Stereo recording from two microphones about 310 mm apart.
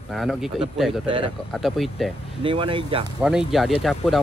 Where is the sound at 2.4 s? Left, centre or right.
Centre.